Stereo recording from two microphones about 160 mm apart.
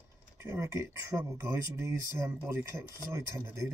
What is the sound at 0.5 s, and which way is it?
Speech, 15° right (ahead or behind).